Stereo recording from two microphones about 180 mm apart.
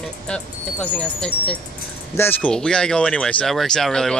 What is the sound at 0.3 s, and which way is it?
A man's voice, 5° left (ahead or behind).